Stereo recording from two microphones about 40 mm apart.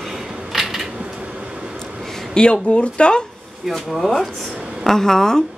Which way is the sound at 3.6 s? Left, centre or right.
Centre.